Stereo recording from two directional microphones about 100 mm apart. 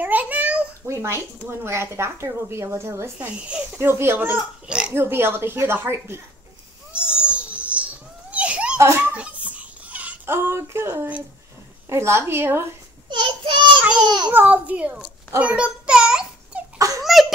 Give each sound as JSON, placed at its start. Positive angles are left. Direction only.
{"t": 0.0, "sound": "a sound", "side_deg": -15}
{"t": 0.8, "sound": "speech", "side_deg": -30}
{"t": 4.6, "sound": "a child's voice", "side_deg": -10}
{"t": 4.9, "sound": "speech", "side_deg": -25}
{"t": 6.9, "sound": "baby cry", "side_deg": -10}
{"t": 8.7, "sound": "a child's voice", "side_deg": -30}
{"t": 9.1, "sound": "a sound", "side_deg": -15}
{"t": 11.9, "sound": "speech", "side_deg": -25}
{"t": 13.1, "sound": "a sound", "side_deg": -55}
{"t": 14.0, "sound": "a child's voice", "side_deg": -45}
{"t": 14.3, "sound": "a child's voice", "side_deg": -15}
{"t": 15.3, "sound": "a sound", "side_deg": -15}